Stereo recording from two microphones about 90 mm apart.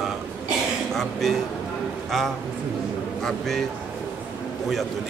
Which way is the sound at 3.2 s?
5° left (ahead or behind).